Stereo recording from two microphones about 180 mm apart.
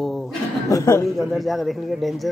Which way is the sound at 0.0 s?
Centre (ahead or behind).